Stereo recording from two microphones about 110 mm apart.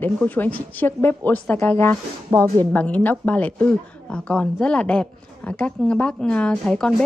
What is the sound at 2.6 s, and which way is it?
Speech, 15° left (ahead or behind).